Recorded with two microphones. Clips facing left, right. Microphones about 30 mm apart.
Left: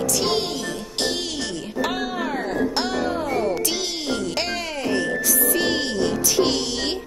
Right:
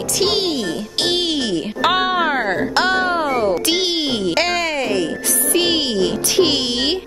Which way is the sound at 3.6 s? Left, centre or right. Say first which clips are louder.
Right 7 dB; right.